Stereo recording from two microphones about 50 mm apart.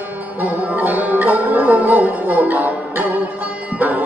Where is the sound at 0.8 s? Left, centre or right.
Right.